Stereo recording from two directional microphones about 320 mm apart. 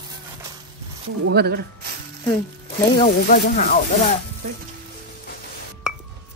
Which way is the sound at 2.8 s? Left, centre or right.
Left.